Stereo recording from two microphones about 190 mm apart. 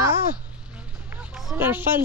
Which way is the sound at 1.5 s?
10° right (ahead or behind).